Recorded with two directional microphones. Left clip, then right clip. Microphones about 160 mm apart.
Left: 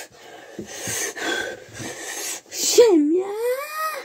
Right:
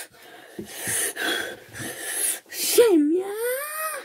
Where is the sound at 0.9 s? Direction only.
5° right (ahead or behind).